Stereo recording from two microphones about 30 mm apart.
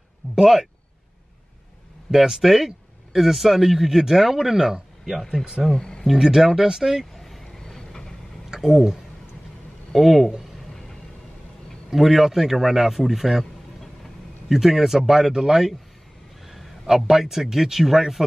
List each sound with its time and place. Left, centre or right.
0.4 s speech: centre
2.0 s speech: centre
5.4 s speech: centre
5.7 s speech: left
6.1 s speech: centre
7.2 s vehicle: centre
7.6 s vehicle: centre
8.5 s a sound: centre
9.9 s speech: centre
11.9 s speech: centre
14.5 s a man's voice: centre